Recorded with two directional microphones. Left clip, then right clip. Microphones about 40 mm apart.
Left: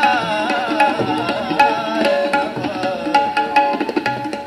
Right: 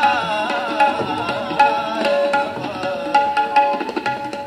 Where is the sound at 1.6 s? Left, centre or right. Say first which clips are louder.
Left 1 dB; left.